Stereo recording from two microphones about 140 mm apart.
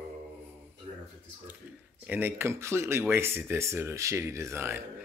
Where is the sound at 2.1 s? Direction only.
15° right (ahead or behind).